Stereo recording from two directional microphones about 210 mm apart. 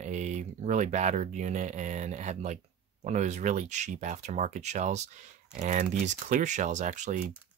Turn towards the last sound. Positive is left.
turn(degrees=-35)  # may be behind; listen again after turning